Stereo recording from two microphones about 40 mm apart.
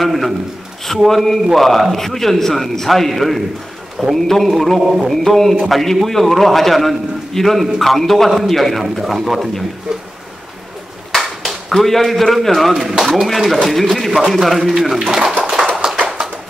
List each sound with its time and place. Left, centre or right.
0.0 s a man's voice: centre
9.9 s speech: centre
11.1 s a sound: centre
12.4 s a man's voice: centre
15.0 s speech: centre
15.4 s a sound: centre